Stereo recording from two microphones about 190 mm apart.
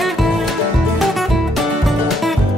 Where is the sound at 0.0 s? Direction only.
Centre (ahead or behind).